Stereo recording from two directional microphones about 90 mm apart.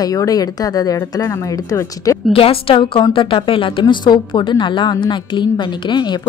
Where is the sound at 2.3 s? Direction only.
90° left; by 3.8 s 75° left (ahead or behind).